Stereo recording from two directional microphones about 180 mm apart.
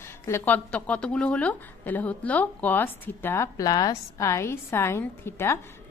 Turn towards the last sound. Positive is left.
turn(degrees=15)  # may be behind; listen again after turning